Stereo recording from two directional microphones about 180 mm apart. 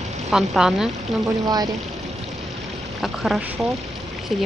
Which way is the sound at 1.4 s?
20° right (ahead or behind).